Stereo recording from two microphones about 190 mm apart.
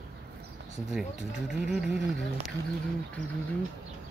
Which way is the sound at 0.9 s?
Centre (ahead or behind).